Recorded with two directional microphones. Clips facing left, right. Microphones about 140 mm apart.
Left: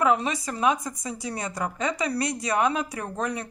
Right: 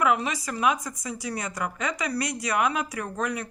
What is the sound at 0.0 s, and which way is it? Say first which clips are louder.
Speech: left 1 dB; 30° left (ahead or behind).